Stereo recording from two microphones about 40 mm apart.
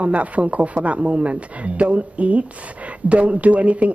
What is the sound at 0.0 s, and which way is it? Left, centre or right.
Speech, right.